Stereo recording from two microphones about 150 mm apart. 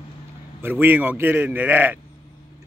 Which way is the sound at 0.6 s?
10° right (ahead or behind).